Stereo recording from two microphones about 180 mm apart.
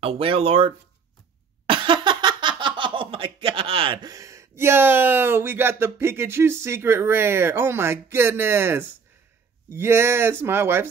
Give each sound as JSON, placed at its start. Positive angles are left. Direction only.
{"t": 0.0, "sound": "speech", "side_deg": -30}